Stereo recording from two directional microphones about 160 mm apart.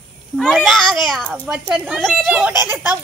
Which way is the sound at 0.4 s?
Centre (ahead or behind).